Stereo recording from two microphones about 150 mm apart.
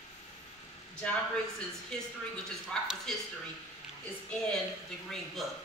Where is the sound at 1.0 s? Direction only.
10° left (ahead or behind).